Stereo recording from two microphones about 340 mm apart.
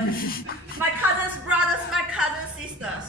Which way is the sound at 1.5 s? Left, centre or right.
Centre.